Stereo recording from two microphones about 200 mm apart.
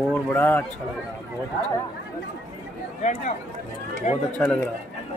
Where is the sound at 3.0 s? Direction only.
35° left (ahead or behind).